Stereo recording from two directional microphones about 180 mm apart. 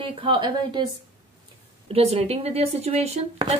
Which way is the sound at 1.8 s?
35° right (ahead or behind).